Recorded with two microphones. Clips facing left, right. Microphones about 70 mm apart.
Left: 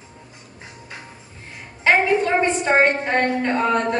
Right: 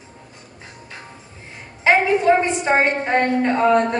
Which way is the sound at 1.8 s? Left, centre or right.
Centre.